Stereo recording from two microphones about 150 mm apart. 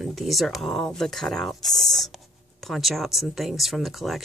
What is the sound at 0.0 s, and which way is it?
Speech, centre (ahead or behind).